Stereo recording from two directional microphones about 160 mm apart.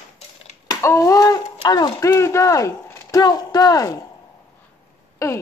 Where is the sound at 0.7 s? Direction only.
20° left (ahead or behind).